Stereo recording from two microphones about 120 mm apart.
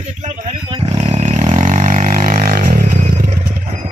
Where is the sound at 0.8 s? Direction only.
60° right (ahead or behind); by 2.9 s 90° right.